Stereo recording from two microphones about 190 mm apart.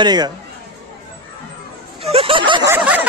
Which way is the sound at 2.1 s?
30° right (ahead or behind).